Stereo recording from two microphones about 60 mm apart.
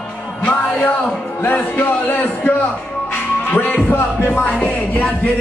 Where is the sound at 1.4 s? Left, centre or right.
Left.